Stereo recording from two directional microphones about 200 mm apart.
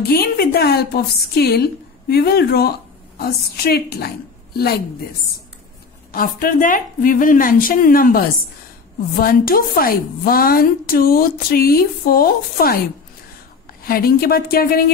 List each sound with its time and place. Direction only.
0.0 s a woman's voice: 50° left (ahead or behind)
6.1 s a woman's voice: 45° left (ahead or behind)
13.8 s a woman's voice: 45° left (ahead or behind)